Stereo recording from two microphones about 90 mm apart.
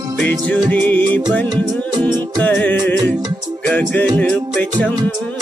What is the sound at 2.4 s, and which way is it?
Music, 20° left (ahead or behind).